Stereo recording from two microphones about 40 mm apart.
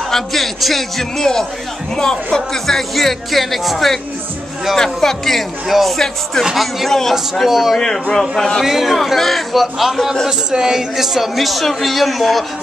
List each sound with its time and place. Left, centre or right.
0.1 s speech: centre
4.7 s speech: centre
5.7 s speech: centre
6.9 s speech: centre
7.4 s speech: centre
7.8 s speech: centre
8.6 s speech: centre